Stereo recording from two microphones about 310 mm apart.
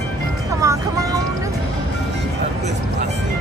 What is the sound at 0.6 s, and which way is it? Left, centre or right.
Music, centre.